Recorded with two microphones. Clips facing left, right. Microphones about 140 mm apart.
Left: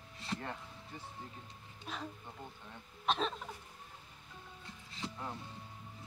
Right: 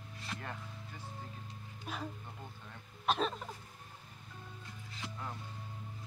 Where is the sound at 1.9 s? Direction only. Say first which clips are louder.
Right 1 dB; 5° right (ahead or behind).